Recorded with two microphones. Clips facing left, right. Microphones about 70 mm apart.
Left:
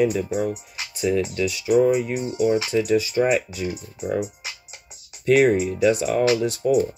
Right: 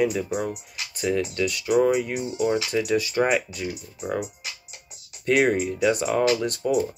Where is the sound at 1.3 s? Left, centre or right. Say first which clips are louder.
Left 2 dB; right.